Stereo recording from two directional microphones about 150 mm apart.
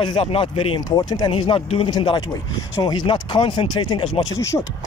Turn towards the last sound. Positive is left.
turn(degrees=20)  # may be behind; listen again after turning